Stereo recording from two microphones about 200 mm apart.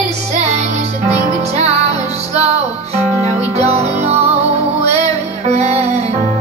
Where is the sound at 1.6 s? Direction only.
30° right (ahead or behind).